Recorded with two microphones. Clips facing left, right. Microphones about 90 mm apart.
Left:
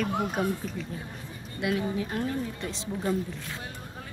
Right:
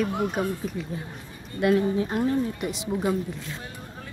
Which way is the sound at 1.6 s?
50° right (ahead or behind).